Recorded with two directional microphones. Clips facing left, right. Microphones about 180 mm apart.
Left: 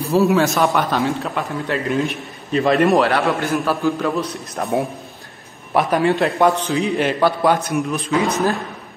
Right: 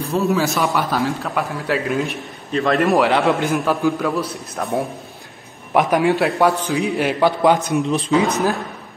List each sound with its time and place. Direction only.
0.1 s a man's voice: centre (ahead or behind)
3.0 s a man's voice: 15° right (ahead or behind)
4.2 s a man's voice: centre (ahead or behind)
5.7 s a man's voice: 10° right (ahead or behind)
6.1 s a man's voice: centre (ahead or behind); by 7.9 s 20° right (ahead or behind)
7.9 s speech: 35° right (ahead or behind)
8.2 s a man's voice: 15° right (ahead or behind)